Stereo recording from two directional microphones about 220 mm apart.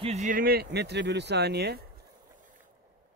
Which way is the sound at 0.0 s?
30° right (ahead or behind).